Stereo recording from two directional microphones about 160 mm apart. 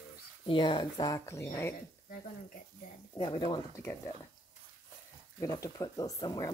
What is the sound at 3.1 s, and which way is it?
Speech, 30° left (ahead or behind).